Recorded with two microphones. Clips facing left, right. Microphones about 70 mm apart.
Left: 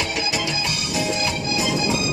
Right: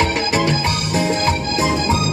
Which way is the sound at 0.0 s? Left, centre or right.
Right.